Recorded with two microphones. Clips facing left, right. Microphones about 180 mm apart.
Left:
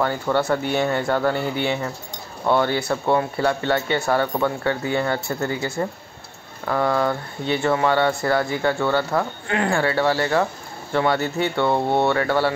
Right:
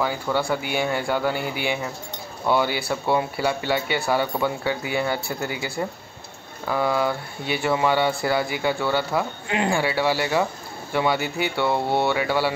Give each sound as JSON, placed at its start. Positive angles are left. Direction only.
{"t": 0.0, "sound": "speech", "side_deg": -5}
{"t": 11.7, "sound": "speech", "side_deg": 20}
{"t": 12.1, "sound": "speech", "side_deg": -5}